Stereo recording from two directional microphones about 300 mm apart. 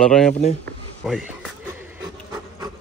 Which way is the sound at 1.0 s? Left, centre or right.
Centre.